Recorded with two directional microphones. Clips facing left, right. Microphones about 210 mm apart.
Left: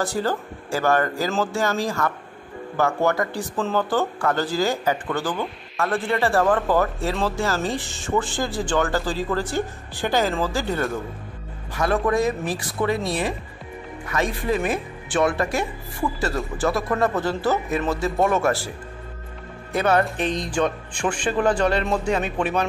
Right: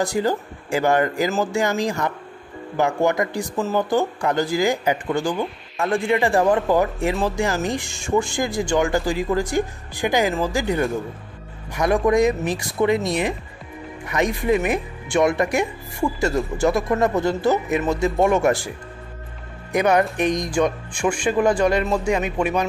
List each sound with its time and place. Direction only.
0.0 s speech: 15° right (ahead or behind)
19.7 s a man's voice: 15° right (ahead or behind)
22.1 s speech: 10° right (ahead or behind)